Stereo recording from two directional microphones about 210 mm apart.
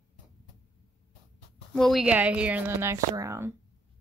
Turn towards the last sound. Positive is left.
turn(degrees=-15)  # may be behind; listen again after turning